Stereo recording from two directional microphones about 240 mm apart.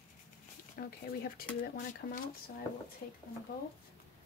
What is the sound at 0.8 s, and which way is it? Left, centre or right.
Speech, left.